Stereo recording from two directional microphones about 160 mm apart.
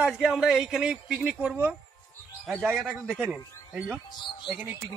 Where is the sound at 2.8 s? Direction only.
Centre (ahead or behind).